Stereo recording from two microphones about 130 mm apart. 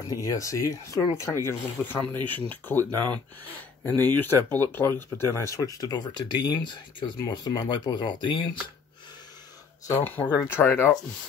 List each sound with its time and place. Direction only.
0.0 s speech: 30° left (ahead or behind)
3.8 s speech: 15° left (ahead or behind); by 8.5 s 35° left (ahead or behind)
9.8 s speech: 15° left (ahead or behind)